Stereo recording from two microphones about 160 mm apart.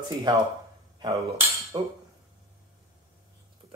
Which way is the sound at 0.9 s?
25° right (ahead or behind).